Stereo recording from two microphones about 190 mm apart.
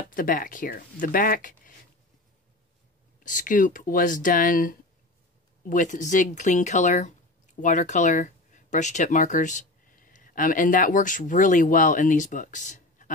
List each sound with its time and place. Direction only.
0.1 s speech: 45° left (ahead or behind)
3.3 s speech: 45° left (ahead or behind)